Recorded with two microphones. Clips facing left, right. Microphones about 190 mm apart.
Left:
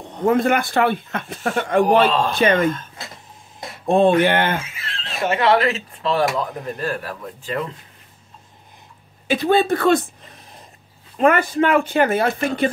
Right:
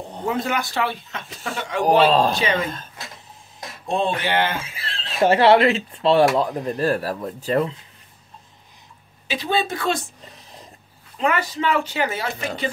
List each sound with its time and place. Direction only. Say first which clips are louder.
0.4 s speech: left 6 dB; 55° left (ahead or behind)
2.0 s speech: right 2 dB; 35° right (ahead or behind)
2.3 s speech: left 6 dB; 55° left (ahead or behind)
3.8 s speech: left 8 dB; 55° left (ahead or behind)
4.6 s speech: left 1 dB; 30° right (ahead or behind)
9.3 s speech: left 7 dB; 55° left (ahead or behind)
11.1 s speech: left 6 dB; 50° left (ahead or behind)